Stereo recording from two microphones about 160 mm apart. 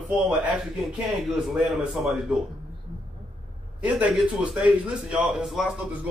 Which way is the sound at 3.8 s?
5° right (ahead or behind).